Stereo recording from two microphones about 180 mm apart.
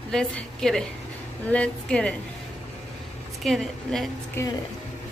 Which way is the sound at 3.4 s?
Centre (ahead or behind).